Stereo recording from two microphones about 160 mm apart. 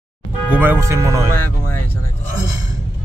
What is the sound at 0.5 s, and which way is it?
Speech, 10° right (ahead or behind).